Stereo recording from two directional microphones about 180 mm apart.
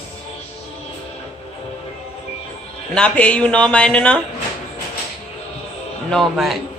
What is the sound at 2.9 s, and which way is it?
Speech, 5° left (ahead or behind).